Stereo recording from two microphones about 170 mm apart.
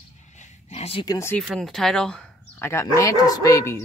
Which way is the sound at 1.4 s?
5° left (ahead or behind).